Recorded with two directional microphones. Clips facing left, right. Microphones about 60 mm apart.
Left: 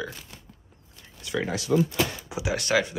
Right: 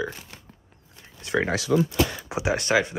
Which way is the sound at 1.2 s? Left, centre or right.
Right.